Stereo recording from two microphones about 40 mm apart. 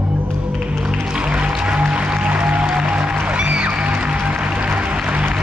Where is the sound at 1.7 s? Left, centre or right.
Right.